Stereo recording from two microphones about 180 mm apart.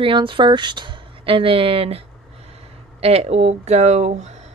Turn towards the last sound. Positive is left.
turn(degrees=-40)  # may be behind; listen again after turning